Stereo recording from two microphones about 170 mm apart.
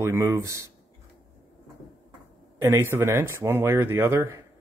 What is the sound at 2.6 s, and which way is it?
Speech, 15° right (ahead or behind).